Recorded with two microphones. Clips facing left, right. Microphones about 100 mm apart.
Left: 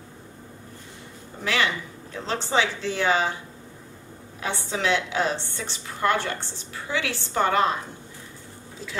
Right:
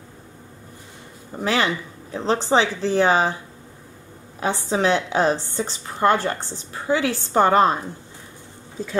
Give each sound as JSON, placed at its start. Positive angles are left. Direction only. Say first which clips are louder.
{"t": 1.4, "sound": "a woman's voice", "louder": "right 4 dB", "side_deg": -35}
{"t": 4.4, "sound": "a woman's voice", "louder": "right 7 dB", "side_deg": -40}